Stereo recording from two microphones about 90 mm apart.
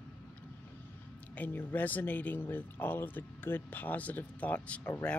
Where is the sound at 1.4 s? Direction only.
20° left (ahead or behind).